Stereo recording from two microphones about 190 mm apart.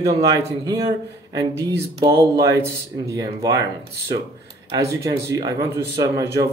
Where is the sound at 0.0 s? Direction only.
20° right (ahead or behind).